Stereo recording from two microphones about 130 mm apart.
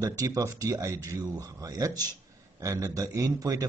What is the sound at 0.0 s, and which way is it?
Speech, 25° right (ahead or behind).